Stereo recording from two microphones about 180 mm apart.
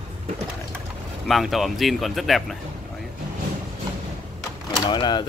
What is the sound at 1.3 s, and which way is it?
Speech, centre (ahead or behind).